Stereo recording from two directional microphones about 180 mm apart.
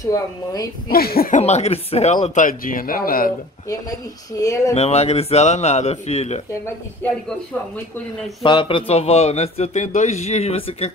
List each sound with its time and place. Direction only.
0.0 s a woman's voice: 20° left (ahead or behind)
0.8 s speech: 55° left (ahead or behind)
1.4 s speech: 35° left (ahead or behind)
4.4 s a woman's voice: 20° left (ahead or behind)
4.7 s speech: 35° left (ahead or behind)
8.4 s speech: 25° left (ahead or behind)